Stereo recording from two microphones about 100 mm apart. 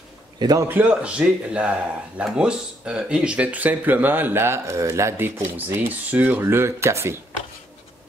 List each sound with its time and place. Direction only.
0.4 s a man's voice: 40° right (ahead or behind)
0.7 s speech: 15° right (ahead or behind)